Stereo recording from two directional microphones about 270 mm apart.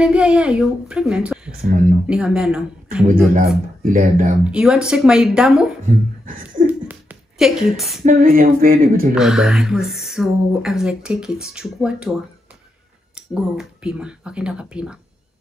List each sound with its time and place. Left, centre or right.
0.0 s speech: centre
1.7 s speech: right
2.0 s speech: centre
3.3 s speech: right
4.5 s speech: centre
6.2 s a sound: right
6.9 s a sound: centre
8.0 s speech: right
9.1 s speech: centre
13.1 s speech: centre